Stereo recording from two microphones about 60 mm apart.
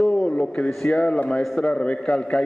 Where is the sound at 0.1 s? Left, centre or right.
Centre.